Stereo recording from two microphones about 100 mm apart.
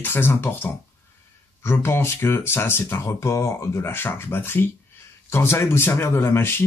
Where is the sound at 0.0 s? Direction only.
20° left (ahead or behind).